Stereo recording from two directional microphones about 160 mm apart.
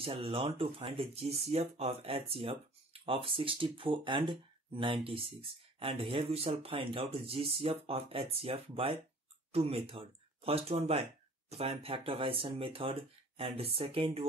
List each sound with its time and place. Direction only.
0.0 s speech: 35° right (ahead or behind)